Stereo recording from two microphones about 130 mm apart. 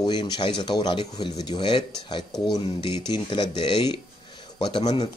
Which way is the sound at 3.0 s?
35° left (ahead or behind).